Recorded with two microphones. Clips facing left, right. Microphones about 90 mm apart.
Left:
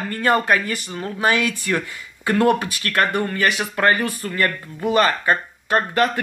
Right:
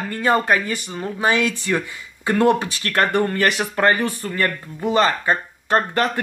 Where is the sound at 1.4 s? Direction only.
25° right (ahead or behind).